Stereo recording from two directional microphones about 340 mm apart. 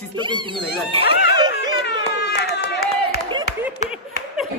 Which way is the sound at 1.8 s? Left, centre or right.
Left.